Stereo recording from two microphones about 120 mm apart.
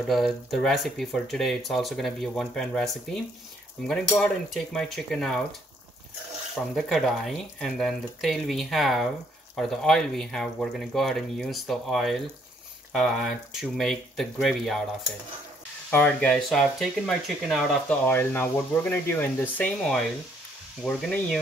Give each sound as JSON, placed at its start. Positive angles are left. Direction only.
{"t": 0.0, "sound": "speech", "side_deg": 0}
{"t": 6.5, "sound": "speech", "side_deg": 0}
{"t": 15.9, "sound": "speech", "side_deg": 10}
{"t": 18.0, "sound": "speech", "side_deg": 15}
{"t": 19.8, "sound": "speech", "side_deg": 0}